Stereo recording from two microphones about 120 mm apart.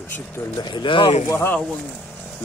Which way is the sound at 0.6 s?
40° left (ahead or behind).